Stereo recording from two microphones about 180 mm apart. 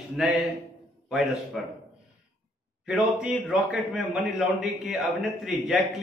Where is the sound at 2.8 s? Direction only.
5° right (ahead or behind).